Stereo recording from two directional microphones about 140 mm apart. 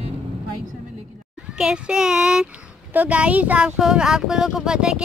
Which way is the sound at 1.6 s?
5° right (ahead or behind).